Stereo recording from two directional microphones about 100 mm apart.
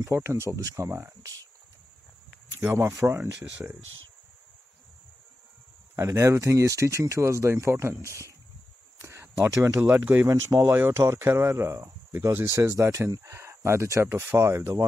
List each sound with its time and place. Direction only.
0.0 s speech: 25° right (ahead or behind)
3.0 s speech: 25° right (ahead or behind)
5.9 s speech: 30° right (ahead or behind)
10.5 s speech: 30° right (ahead or behind)